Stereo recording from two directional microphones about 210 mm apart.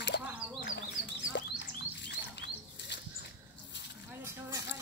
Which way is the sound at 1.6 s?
55° left (ahead or behind).